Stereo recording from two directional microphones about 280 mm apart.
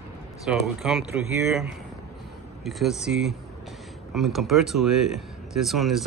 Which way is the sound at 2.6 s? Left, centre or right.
Centre.